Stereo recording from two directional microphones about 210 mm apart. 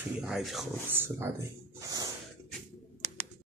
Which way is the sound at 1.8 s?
15° right (ahead or behind).